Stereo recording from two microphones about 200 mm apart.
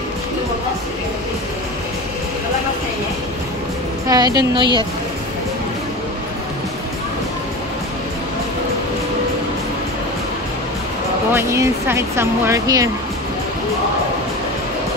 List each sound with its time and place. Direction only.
4.1 s a woman's voice: 20° right (ahead or behind)
11.3 s speech: 10° right (ahead or behind)